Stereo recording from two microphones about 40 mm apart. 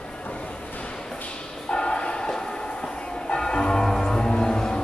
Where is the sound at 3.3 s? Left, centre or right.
Centre.